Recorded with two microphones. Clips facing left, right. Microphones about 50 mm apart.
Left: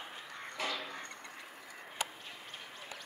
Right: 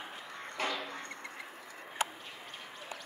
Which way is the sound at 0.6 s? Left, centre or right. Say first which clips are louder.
Right 3 dB; right.